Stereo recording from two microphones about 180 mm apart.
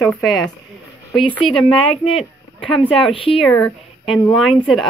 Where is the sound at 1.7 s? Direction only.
30° left (ahead or behind).